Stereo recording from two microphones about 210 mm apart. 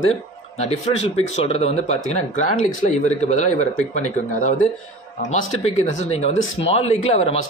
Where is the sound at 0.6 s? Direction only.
30° left (ahead or behind).